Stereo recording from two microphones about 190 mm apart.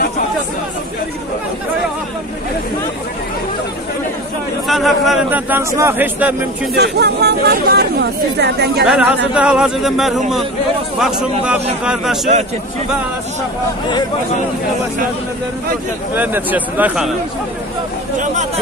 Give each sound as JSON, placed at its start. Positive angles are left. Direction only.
{"t": 4.6, "sound": "a man's voice", "side_deg": 0}
{"t": 6.8, "sound": "speech", "side_deg": -60}
{"t": 8.8, "sound": "speech", "side_deg": -5}
{"t": 16.2, "sound": "a man's voice", "side_deg": -10}
{"t": 18.2, "sound": "speech", "side_deg": -40}